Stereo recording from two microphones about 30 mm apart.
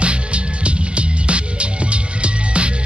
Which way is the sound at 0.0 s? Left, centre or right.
Right.